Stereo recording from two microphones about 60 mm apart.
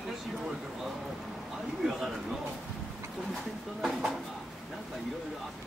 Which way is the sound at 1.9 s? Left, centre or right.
Centre.